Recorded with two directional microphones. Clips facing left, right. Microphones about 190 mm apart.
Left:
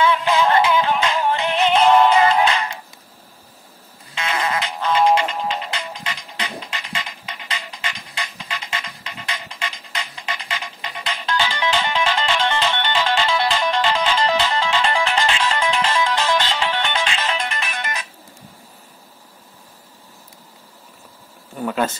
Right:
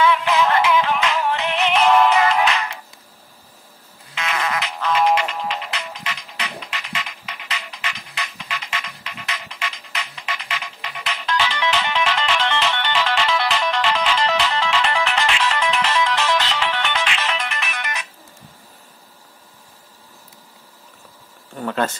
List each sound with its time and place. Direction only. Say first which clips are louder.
0.0 s music: even; 30° left (ahead or behind)
4.1 s music: left 1 dB; 30° left (ahead or behind)
21.5 s a sound: left 1 dB; 10° left (ahead or behind)